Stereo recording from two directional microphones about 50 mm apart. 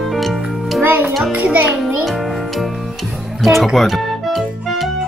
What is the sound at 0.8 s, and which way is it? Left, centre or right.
Music, right.